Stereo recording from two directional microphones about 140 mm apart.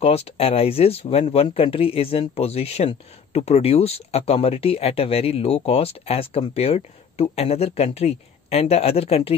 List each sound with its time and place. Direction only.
0.0 s speech: 45° left (ahead or behind)